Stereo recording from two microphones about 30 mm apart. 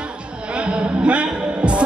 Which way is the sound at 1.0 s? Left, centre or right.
Right.